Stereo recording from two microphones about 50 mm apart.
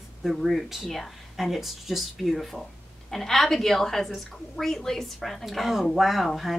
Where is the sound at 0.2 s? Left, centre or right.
Centre.